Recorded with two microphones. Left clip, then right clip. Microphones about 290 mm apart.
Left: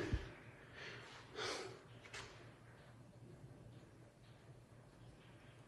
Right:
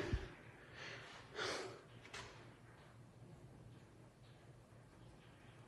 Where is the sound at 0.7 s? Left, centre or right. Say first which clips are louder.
Right 1 dB; centre.